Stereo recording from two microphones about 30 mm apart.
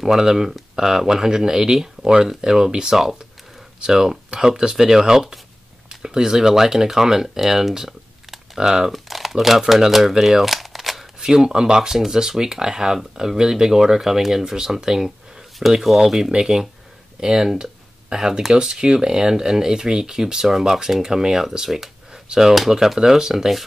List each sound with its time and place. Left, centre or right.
0.0 s speech: centre
4.3 s speech: right
8.9 s speech: centre
11.1 s speech: centre
11.9 s speech: centre
16.3 s speech: right
17.2 s speech: centre
22.9 s speech: centre